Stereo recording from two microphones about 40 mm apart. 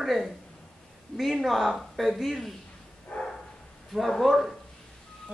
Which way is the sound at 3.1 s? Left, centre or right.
Centre.